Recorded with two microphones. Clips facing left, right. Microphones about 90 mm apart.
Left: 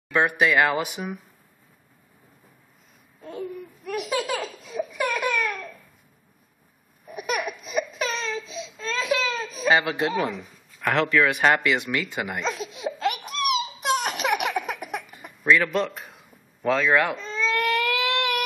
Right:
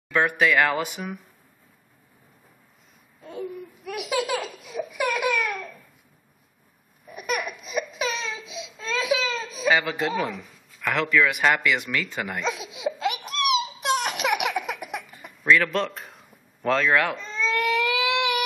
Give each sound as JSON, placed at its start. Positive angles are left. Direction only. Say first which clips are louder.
{"t": 0.1, "sound": "speech", "louder": "even", "side_deg": 20}
{"t": 3.2, "sound": "laughter", "louder": "even", "side_deg": 0}
{"t": 7.1, "sound": "a sound", "louder": "left 1 dB", "side_deg": 0}
{"t": 9.7, "sound": "speech", "louder": "left 1 dB", "side_deg": 25}
{"t": 12.4, "sound": "baby laughter", "louder": "even", "side_deg": 0}
{"t": 15.1, "sound": "a sound", "louder": "even", "side_deg": 5}